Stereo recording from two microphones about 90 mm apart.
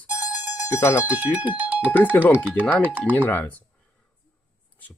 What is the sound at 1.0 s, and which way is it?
Speech, 15° right (ahead or behind).